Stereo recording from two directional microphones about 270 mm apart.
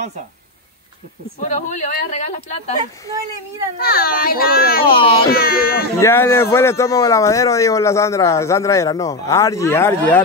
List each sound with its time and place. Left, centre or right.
1.4 s speech: left
3.8 s speech: left
4.9 s speech: centre
5.3 s speech: left
5.9 s speech: centre